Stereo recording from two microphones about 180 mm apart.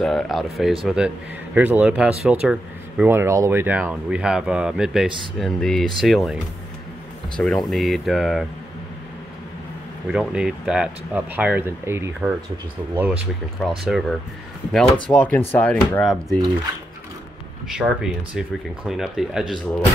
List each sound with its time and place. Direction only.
0.0 s speech: centre (ahead or behind)
10.1 s speech: 5° right (ahead or behind)
16.3 s speech: 25° right (ahead or behind)
17.6 s speech: 5° right (ahead or behind)